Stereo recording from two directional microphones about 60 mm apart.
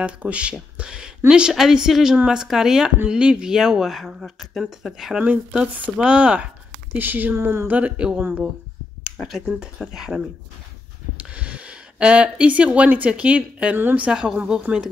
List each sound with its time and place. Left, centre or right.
0.0 s speech: right; by 5.2 s centre
5.2 s speech: centre
7.0 s speech: right
7.3 s a sound: right
7.6 s speech: right
9.8 s speech: centre
11.1 s speech: right